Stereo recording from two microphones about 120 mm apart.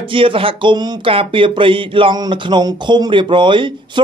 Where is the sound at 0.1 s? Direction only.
45° right (ahead or behind).